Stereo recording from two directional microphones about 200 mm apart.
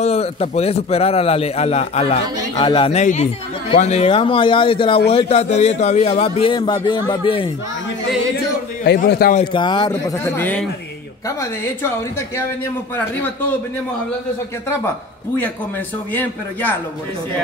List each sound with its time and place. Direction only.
0.0 s a man's voice: 30° left (ahead or behind)
8.8 s a man's voice: 55° left (ahead or behind)
9.4 s a man's voice: 25° left (ahead or behind); by 10.7 s 10° left (ahead or behind)
16.1 s a man's voice: 10° left (ahead or behind)